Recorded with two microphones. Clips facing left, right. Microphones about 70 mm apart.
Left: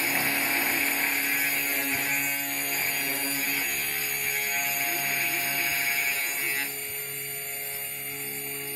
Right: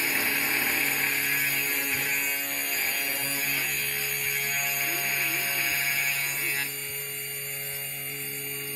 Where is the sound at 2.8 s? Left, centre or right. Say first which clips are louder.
Even; left.